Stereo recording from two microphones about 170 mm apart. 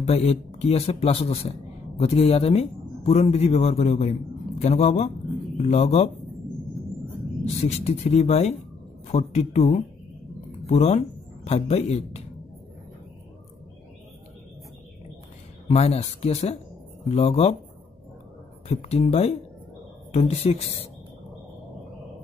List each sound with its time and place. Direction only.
0.0 s speech: 35° left (ahead or behind)
7.4 s speech: 40° left (ahead or behind)
15.7 s speech: 40° left (ahead or behind)
18.7 s speech: 35° left (ahead or behind)